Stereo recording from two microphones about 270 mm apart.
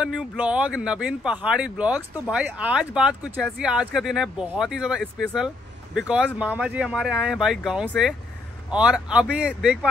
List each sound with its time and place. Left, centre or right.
0.0 s speech: centre